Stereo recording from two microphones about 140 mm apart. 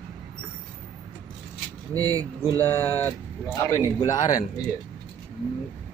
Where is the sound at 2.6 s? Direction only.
20° left (ahead or behind).